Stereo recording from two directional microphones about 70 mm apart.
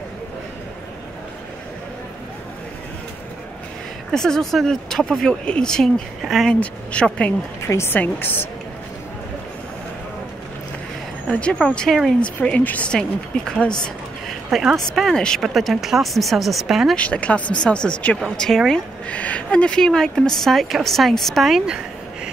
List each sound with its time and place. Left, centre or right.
4.1 s speech: centre
6.2 s speech: centre
6.5 s speech: centre
7.6 s a woman's voice: left
11.6 s speech: centre
11.9 s speech: centre
12.4 s speech: left
14.5 s speech: centre
15.0 s speech: centre
16.9 s speech: centre
18.7 s speech: centre